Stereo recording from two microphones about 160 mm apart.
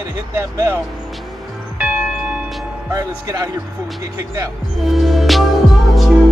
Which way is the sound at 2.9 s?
20° right (ahead or behind).